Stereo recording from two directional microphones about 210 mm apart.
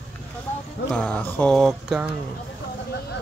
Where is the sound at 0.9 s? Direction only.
5° left (ahead or behind).